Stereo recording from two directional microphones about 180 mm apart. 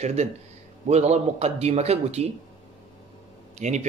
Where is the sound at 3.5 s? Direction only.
40° right (ahead or behind).